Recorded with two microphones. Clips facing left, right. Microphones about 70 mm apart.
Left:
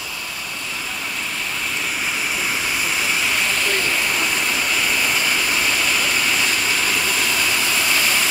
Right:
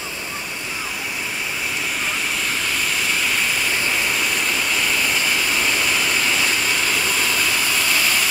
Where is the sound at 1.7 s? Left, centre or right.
Centre.